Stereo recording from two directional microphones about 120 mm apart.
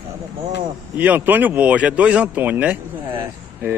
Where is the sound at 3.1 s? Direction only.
20° right (ahead or behind).